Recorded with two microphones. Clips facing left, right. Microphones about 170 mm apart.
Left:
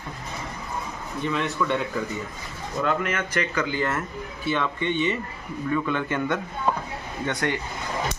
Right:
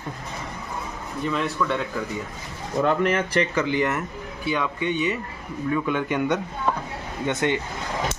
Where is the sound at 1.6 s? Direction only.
5° left (ahead or behind).